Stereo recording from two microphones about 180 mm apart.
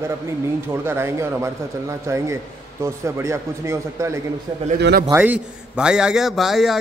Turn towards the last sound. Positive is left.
turn(degrees=0)  # may be behind; listen again after turning